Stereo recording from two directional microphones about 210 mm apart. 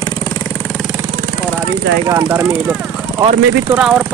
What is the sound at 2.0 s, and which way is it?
Speech, 15° right (ahead or behind).